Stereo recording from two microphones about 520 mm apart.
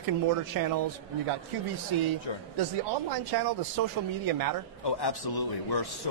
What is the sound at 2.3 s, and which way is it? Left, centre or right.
Speech, left.